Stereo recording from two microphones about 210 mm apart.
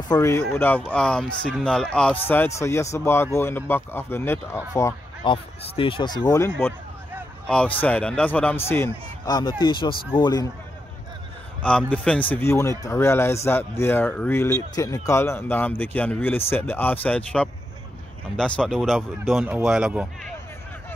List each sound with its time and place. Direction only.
0.1 s a man's voice: 15° left (ahead or behind)
7.4 s a man's voice: 5° left (ahead or behind)
11.6 s a man's voice: 5° left (ahead or behind)